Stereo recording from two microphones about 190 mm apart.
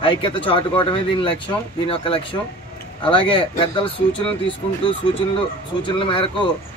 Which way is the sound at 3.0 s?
25° left (ahead or behind).